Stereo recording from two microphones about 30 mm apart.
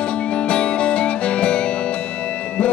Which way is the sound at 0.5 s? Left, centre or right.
Left.